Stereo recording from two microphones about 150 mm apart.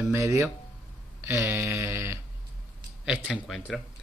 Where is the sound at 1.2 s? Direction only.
15° right (ahead or behind).